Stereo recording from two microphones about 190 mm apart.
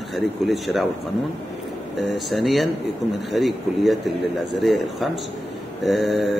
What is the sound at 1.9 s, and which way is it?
A man's voice, centre (ahead or behind).